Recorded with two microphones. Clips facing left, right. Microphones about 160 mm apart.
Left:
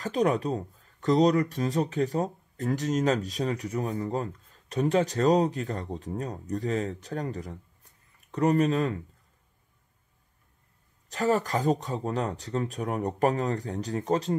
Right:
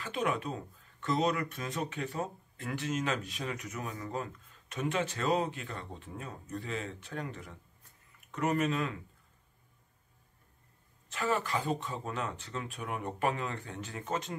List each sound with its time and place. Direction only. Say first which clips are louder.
0.0 s speech: left 8 dB; 40° left (ahead or behind)
11.1 s speech: left 7 dB; 40° left (ahead or behind)